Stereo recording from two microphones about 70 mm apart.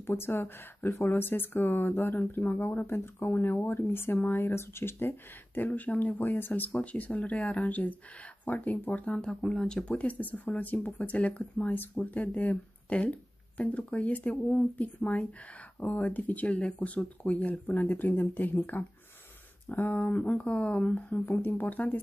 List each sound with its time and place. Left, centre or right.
0.0 s speech: left
9.1 s speech: centre
21.2 s speech: left